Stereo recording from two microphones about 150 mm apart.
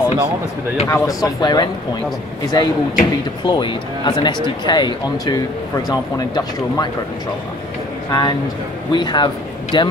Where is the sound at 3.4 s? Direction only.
30° left (ahead or behind).